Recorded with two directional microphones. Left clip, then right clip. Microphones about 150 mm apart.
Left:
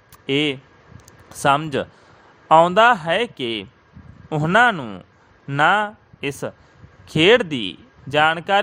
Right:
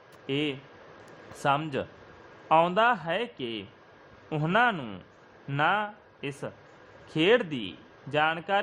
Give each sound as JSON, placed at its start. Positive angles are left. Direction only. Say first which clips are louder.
{"t": 0.3, "sound": "speech", "louder": "left 10 dB", "side_deg": 50}
{"t": 5.5, "sound": "speech", "louder": "left 10 dB", "side_deg": 55}